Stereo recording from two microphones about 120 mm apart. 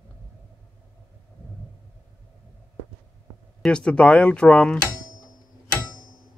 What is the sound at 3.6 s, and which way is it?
Speech, 10° left (ahead or behind).